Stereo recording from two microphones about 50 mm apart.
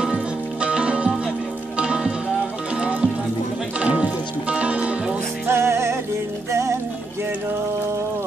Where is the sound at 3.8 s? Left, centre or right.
Right.